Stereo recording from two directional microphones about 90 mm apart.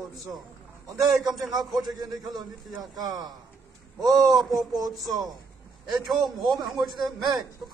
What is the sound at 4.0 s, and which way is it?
Speech, 45° right (ahead or behind).